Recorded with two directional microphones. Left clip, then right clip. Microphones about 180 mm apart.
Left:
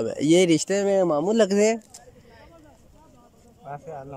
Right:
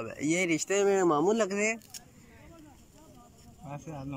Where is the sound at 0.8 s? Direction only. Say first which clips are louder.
Left 2 dB; 15° left (ahead or behind).